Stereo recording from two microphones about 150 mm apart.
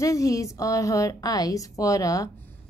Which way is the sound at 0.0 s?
20° left (ahead or behind).